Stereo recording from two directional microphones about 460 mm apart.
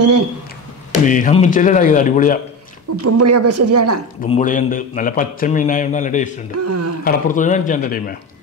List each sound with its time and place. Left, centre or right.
1.0 s speech: centre
3.0 s speech: right
4.2 s speech: centre
6.5 s speech: right
7.1 s speech: centre